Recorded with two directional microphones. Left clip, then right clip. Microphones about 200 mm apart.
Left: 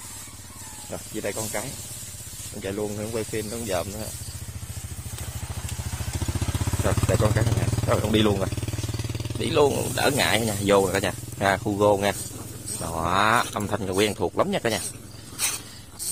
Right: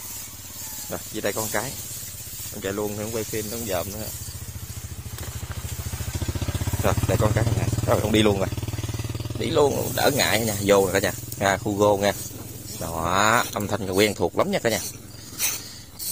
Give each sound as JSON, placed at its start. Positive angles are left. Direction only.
{"t": 0.9, "sound": "speech", "side_deg": -20}
{"t": 3.1, "sound": "speech", "side_deg": 0}
{"t": 6.8, "sound": "speech", "side_deg": -15}
{"t": 9.0, "sound": "speech", "side_deg": 0}
{"t": 15.3, "sound": "a sound", "side_deg": 10}